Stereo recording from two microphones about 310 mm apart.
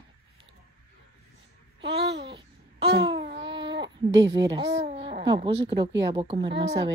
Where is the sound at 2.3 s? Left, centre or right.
Centre.